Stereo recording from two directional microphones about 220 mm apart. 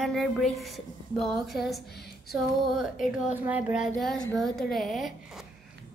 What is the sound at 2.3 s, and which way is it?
A woman's voice, centre (ahead or behind).